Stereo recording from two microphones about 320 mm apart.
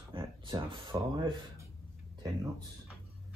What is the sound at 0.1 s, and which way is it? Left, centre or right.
Speech, centre.